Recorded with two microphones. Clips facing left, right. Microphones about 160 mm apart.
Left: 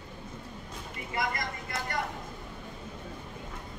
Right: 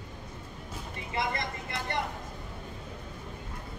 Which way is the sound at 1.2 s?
25° right (ahead or behind).